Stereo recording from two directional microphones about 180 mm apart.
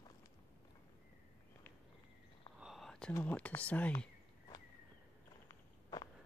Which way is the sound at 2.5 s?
Centre (ahead or behind).